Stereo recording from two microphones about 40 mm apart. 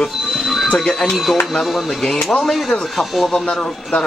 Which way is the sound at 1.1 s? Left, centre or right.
Centre.